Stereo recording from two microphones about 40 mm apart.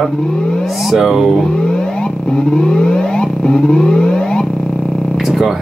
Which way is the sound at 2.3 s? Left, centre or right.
Left.